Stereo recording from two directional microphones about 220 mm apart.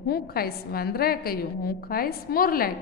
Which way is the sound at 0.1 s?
45° left (ahead or behind).